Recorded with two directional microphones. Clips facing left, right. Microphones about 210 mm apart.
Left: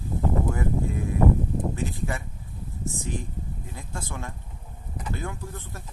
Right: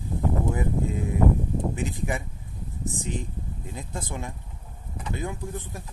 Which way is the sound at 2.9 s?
20° right (ahead or behind).